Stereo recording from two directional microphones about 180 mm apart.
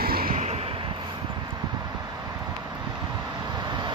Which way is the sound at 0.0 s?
55° right (ahead or behind).